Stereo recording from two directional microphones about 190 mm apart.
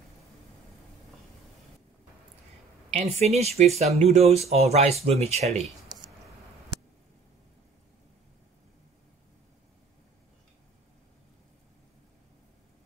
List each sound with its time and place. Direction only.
2.9 s speech: 35° right (ahead or behind)